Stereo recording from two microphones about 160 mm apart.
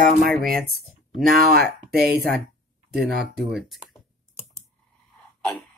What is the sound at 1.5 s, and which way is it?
Speech, 85° right.